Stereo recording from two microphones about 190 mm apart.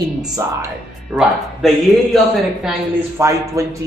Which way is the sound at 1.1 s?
5° right (ahead or behind).